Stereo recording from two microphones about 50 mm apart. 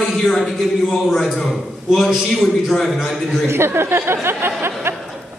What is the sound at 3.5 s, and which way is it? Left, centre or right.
Speech, right.